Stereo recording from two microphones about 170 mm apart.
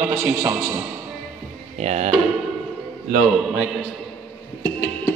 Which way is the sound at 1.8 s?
40° right (ahead or behind).